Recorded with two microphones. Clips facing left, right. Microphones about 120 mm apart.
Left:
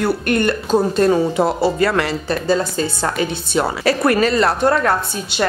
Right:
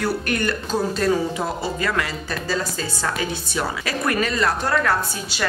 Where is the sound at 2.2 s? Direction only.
25° left (ahead or behind).